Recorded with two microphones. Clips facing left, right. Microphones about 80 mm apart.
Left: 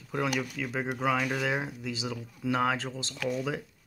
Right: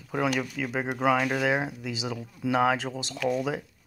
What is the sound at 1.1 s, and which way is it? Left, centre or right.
Speech, right.